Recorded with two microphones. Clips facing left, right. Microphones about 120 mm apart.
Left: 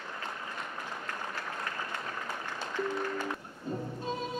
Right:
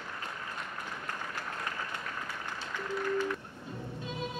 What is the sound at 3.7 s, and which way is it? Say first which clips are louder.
Music: left 8 dB; 40° left (ahead or behind).